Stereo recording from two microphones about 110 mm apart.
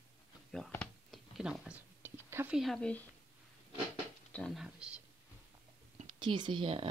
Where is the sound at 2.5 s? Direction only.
Centre (ahead or behind).